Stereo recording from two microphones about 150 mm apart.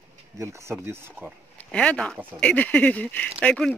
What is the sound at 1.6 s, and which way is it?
Speech, 5° left (ahead or behind).